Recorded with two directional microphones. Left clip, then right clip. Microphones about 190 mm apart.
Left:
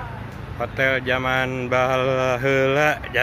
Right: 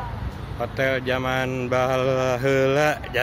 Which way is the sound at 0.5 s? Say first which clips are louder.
Left 2 dB; 10° right (ahead or behind).